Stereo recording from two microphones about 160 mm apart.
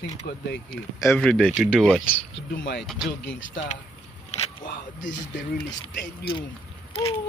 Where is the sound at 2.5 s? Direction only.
90° left.